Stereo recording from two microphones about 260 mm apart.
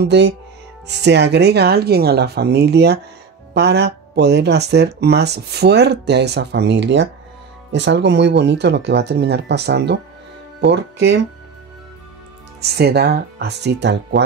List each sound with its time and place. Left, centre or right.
0.0 s speech: right
12.5 s speech: right